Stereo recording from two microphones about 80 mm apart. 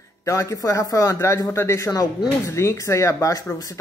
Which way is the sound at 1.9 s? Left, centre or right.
Left.